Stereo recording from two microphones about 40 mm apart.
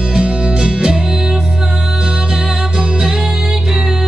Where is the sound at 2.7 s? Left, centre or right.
Centre.